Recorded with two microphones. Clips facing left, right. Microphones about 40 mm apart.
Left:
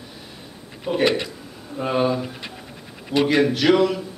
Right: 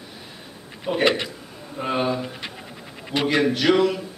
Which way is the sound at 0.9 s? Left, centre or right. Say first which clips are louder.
Even; centre.